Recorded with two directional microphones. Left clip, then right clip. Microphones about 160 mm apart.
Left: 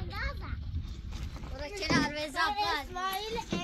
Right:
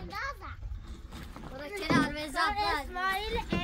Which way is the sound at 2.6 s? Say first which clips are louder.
Right 1 dB; 45° right (ahead or behind).